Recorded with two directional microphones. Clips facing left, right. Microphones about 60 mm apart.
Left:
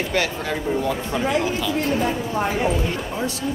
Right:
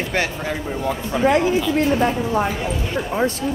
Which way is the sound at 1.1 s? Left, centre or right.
Centre.